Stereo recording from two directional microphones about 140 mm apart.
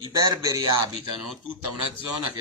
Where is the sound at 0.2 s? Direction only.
25° right (ahead or behind).